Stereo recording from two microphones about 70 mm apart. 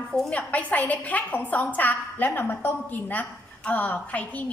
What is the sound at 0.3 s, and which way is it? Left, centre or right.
A woman's voice, centre.